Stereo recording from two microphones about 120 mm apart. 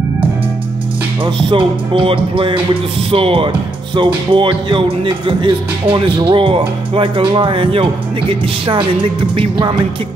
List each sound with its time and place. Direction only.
1.2 s speech: 45° right (ahead or behind)